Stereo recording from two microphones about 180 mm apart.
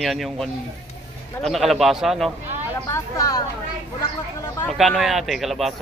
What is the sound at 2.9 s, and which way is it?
Speech, 20° left (ahead or behind).